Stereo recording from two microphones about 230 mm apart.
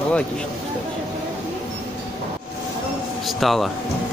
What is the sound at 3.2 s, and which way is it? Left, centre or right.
Speech, centre.